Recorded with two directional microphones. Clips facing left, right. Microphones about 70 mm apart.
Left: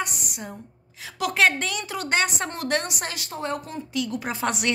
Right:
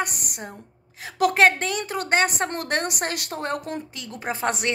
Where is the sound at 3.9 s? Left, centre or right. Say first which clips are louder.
Left 3 dB; right.